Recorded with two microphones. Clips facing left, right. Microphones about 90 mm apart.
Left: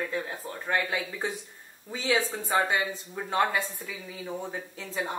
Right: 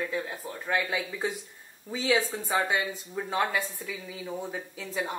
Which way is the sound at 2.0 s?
20° left (ahead or behind).